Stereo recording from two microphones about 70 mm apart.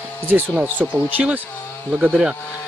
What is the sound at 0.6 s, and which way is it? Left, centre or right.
Speech, right.